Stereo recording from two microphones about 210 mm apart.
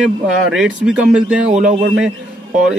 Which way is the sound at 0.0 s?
5° right (ahead or behind).